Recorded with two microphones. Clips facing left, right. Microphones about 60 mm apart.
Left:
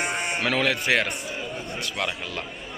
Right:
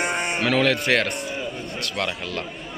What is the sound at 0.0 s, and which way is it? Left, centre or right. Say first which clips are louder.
A man's voice: right 3 dB; centre.